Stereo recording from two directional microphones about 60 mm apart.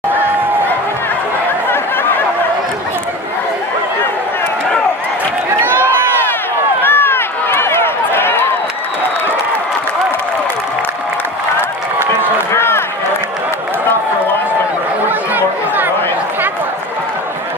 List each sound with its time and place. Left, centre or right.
6.8 s run: left
12.2 s a sound: left
15.0 s chatter: right